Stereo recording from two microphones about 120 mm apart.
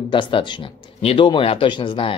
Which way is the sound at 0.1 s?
40° left (ahead or behind).